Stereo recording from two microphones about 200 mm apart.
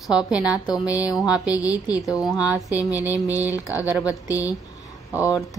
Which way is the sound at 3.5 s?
15° left (ahead or behind).